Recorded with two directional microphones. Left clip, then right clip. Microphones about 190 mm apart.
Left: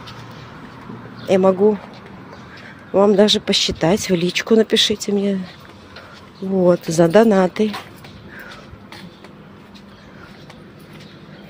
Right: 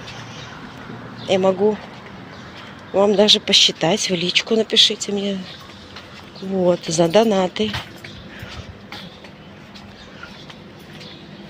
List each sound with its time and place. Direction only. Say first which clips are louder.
1.2 s speech: left 2 dB; 35° left (ahead or behind)
2.9 s speech: left 1 dB; 30° left (ahead or behind)
6.6 s speech: left 2 dB; 35° left (ahead or behind)